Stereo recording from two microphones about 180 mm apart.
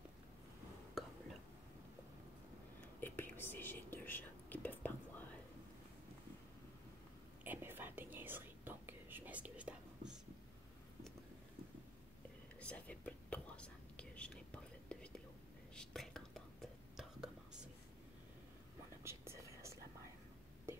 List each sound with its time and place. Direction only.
1.0 s whispering: centre (ahead or behind)
3.0 s whispering: 10° left (ahead or behind)
7.4 s whispering: 10° right (ahead or behind)
12.5 s whispering: 10° left (ahead or behind)
19.0 s whispering: 15° right (ahead or behind)